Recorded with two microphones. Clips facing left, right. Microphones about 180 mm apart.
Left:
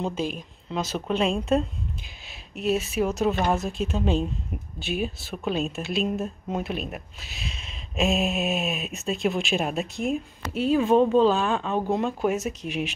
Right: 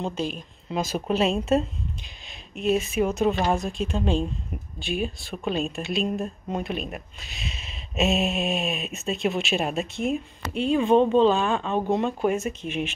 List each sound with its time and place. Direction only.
0.0 s speech: 10° left (ahead or behind)
0.7 s speech: 10° right (ahead or behind)